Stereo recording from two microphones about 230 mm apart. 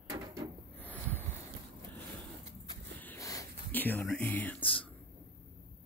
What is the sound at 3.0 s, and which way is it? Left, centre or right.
Whispering, centre.